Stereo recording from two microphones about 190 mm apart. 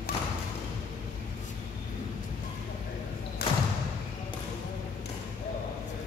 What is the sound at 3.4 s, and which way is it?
Thump, 55° left (ahead or behind).